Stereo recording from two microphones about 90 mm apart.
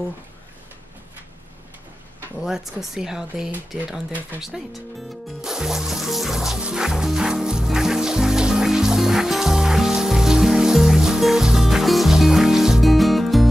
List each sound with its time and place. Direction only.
2.4 s speech: 5° right (ahead or behind)
5.4 s music: 5° right (ahead or behind)